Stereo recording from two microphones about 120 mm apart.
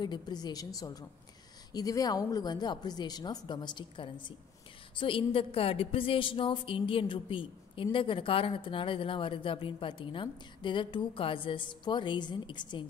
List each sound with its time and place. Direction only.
0.0 s a woman's voice: 35° left (ahead or behind)